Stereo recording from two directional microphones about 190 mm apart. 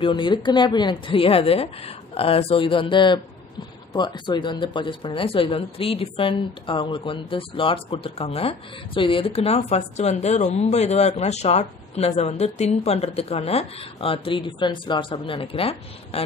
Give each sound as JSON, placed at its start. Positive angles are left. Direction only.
{"t": 0.0, "sound": "speech", "side_deg": 25}